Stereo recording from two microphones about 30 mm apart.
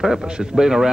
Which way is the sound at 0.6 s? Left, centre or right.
Centre.